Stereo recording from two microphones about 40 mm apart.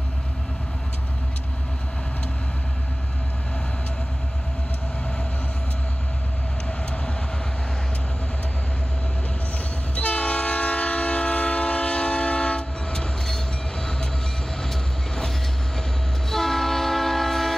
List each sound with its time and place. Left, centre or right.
9.9 s train: left; by 17.6 s centre